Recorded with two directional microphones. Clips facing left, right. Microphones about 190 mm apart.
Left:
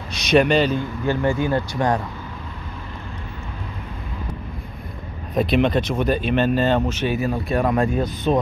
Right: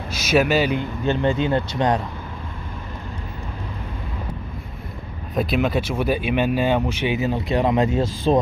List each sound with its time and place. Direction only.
0.1 s a man's voice: 5° right (ahead or behind)
0.7 s speech: 20° right (ahead or behind)
5.3 s speech: centre (ahead or behind); by 8.1 s 20° right (ahead or behind)